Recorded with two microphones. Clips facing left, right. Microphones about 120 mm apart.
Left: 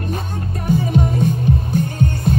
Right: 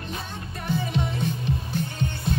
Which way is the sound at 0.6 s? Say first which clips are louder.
Left 9 dB; 50° left (ahead or behind).